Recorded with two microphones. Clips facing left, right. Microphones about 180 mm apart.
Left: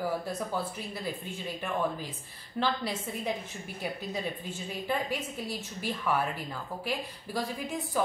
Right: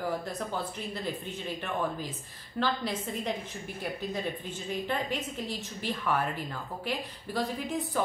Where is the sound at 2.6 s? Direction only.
10° left (ahead or behind).